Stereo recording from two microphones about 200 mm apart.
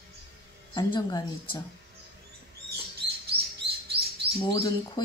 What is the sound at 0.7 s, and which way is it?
Speech, 20° left (ahead or behind).